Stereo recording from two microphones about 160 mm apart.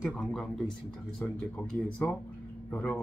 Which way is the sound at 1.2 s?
10° left (ahead or behind).